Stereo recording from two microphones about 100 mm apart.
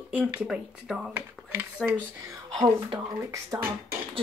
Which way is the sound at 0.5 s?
5° right (ahead or behind).